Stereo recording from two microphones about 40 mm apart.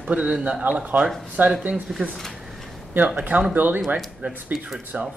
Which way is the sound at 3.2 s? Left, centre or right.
Right.